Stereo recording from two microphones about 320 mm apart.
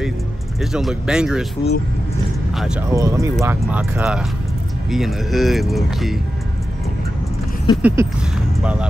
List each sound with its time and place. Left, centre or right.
0.6 s speech: centre
1.6 s speech: centre
2.5 s speech: centre
7.7 s a sound: centre